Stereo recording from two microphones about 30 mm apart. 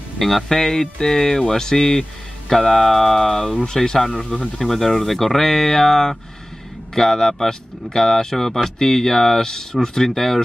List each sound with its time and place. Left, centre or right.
0.2 s speech: centre
0.5 s speech: centre
3.7 s speech: centre
4.6 s speech: centre